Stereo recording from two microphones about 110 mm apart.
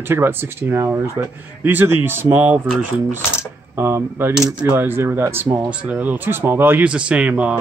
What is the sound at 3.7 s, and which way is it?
A man's voice, 20° right (ahead or behind).